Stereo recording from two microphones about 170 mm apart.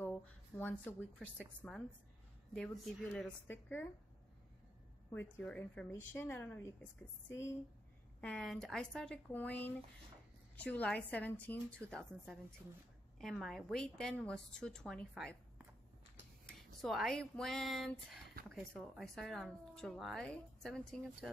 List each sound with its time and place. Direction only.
0.0 s a sound: 10° left (ahead or behind)
1.6 s a woman's voice: 5° left (ahead or behind)
5.1 s a woman's voice: 10° left (ahead or behind)
8.2 s a woman's voice: 5° left (ahead or behind)
16.8 s a woman's voice: centre (ahead or behind)